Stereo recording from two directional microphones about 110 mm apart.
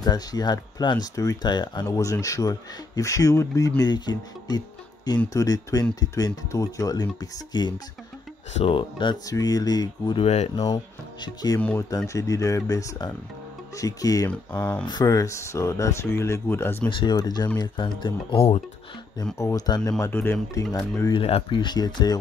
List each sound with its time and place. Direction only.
0.0 s speech: 40° left (ahead or behind)
8.5 s speech: 55° left (ahead or behind)
9.3 s speech: 35° left (ahead or behind)
10.2 s speech: 90° left
11.2 s speech: 35° left (ahead or behind)
14.5 s speech: 15° left (ahead or behind)
14.9 s speech: 35° left (ahead or behind); by 16.9 s 20° left (ahead or behind)
17.0 s speech: 40° left (ahead or behind)
19.3 s speech: 30° left (ahead or behind)
20.1 s speech: 15° left (ahead or behind)
20.6 s speech: 5° left (ahead or behind)
21.1 s speech: 55° left (ahead or behind); by 22.2 s 40° left (ahead or behind)